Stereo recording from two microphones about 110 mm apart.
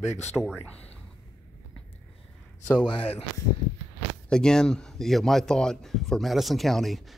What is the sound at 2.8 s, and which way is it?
Speech, 55° left (ahead or behind).